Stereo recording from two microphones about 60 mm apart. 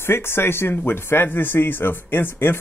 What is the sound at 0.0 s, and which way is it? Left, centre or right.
Speech, left.